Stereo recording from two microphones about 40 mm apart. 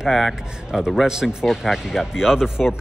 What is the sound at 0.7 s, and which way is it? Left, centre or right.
A man's voice, centre.